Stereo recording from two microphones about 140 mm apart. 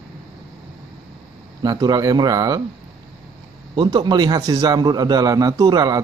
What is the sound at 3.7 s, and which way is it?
A man's voice, 30° right (ahead or behind).